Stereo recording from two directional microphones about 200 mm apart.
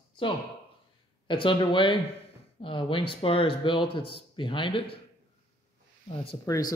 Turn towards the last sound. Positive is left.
turn(degrees=30)  # may be behind; listen again after turning